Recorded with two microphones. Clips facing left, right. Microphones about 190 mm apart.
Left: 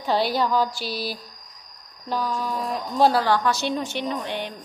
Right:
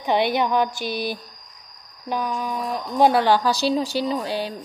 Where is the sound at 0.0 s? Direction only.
20° right (ahead or behind); by 4.6 s 35° right (ahead or behind).